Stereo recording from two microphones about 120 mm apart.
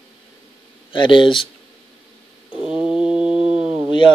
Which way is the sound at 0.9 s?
45° left (ahead or behind).